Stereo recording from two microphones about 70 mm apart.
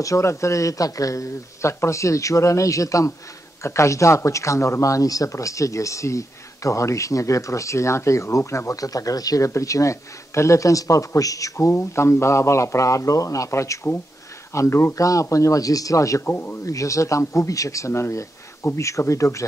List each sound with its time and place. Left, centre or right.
0.0 s speech: left
9.5 s speech: left
15.0 s speech: left
16.3 s speech: left
16.6 s speech: left
18.8 s speech: left